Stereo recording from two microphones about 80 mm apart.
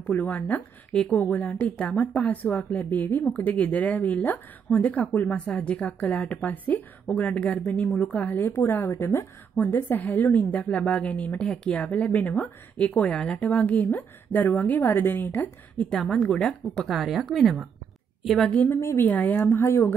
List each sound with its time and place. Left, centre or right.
0.0 s a woman's voice: left
15.8 s a woman's voice: centre
18.7 s a woman's voice: left